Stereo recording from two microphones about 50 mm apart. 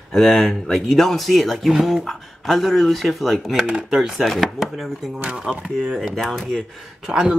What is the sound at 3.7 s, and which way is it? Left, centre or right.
Speech, centre.